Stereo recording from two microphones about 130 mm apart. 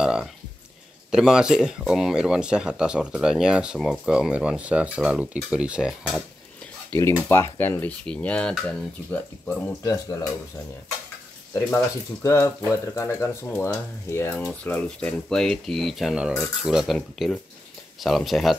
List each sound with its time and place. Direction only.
0.0 s a sound: 5° right (ahead or behind)
1.1 s speech: 5° right (ahead or behind)
7.0 s speech: 20° left (ahead or behind)
9.8 s speech: 25° left (ahead or behind)
11.5 s speech: 20° left (ahead or behind); by 18.6 s centre (ahead or behind)